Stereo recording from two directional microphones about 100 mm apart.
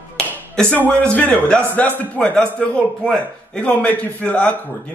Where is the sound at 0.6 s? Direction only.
15° left (ahead or behind).